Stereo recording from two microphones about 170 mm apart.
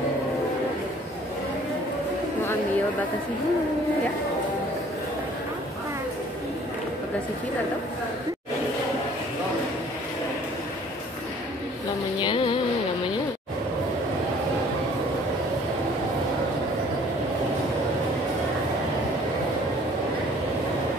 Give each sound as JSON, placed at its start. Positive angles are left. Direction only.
{"t": 12.2, "sound": "music", "side_deg": 30}